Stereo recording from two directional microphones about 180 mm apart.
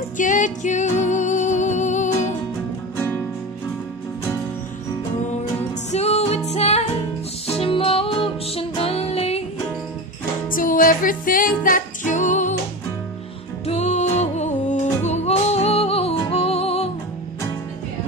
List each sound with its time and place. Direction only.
0.2 s music: 45° left (ahead or behind)
5.9 s music: 35° left (ahead or behind)
10.5 s music: 50° left (ahead or behind)
13.7 s music: 40° left (ahead or behind)